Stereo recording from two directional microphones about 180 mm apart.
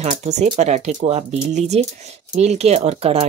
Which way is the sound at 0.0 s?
40° right (ahead or behind).